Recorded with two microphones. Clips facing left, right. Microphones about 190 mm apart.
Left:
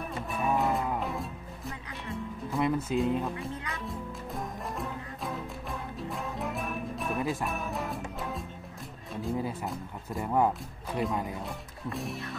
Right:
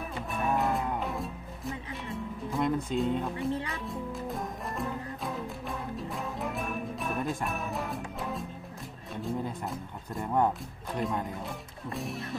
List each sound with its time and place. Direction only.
0.3 s livestock: centre (ahead or behind)
3.5 s music: 30° right (ahead or behind)
3.8 s music: centre (ahead or behind)
9.1 s speech: 5° left (ahead or behind)